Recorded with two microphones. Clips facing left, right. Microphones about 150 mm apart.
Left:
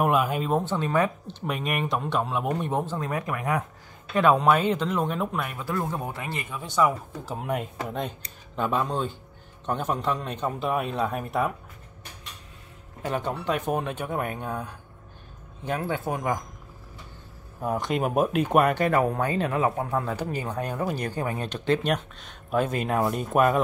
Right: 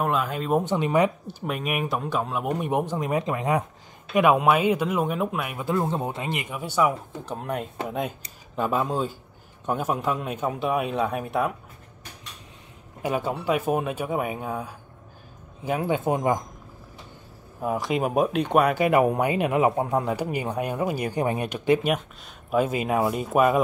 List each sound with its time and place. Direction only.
0.0 s speech: 10° left (ahead or behind)
0.5 s speech: 15° right (ahead or behind)
4.1 s speech: 10° right (ahead or behind)
5.6 s speech: 20° right (ahead or behind)
7.2 s a man's voice: 5° left (ahead or behind)
13.0 s speech: 10° right (ahead or behind)
17.6 s a man's voice: centre (ahead or behind)
18.9 s speech: 15° right (ahead or behind)